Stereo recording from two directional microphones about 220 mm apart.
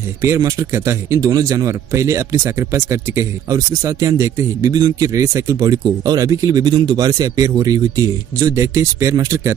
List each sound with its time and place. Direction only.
0.2 s a man's voice: 15° right (ahead or behind)